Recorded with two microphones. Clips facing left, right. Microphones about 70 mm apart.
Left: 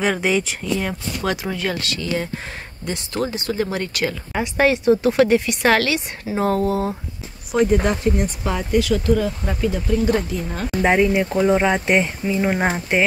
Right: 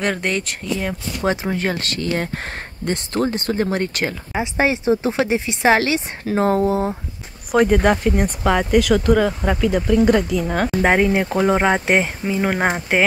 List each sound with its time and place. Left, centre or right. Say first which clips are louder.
0.0 s speech: left 2 dB; centre
1.2 s speech: right 3 dB; right
4.3 s speech: left 2 dB; centre
7.5 s speech: right 3 dB; right
9.4 s speech: right 4 dB; right
10.8 s speech: left 1 dB; right